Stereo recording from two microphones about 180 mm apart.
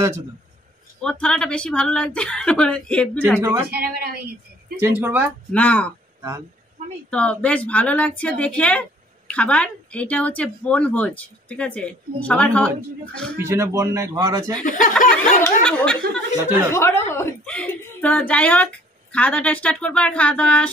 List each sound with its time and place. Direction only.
1.2 s speech: 5° left (ahead or behind)
3.3 s a man's voice: 15° right (ahead or behind)
3.7 s a woman's voice: 60° right (ahead or behind)
4.7 s a man's voice: 10° right (ahead or behind)
5.5 s speech: 5° left (ahead or behind)
7.1 s speech: 5° left (ahead or behind)
13.4 s a man's voice: 15° right (ahead or behind)
14.6 s speech: 45° left (ahead or behind)
15.6 s speech: 5° left (ahead or behind)
16.4 s a man's voice: 15° right (ahead or behind)
16.7 s speech: 15° left (ahead or behind)